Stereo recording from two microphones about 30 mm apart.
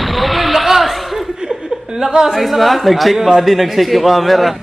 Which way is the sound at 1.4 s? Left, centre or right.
Right.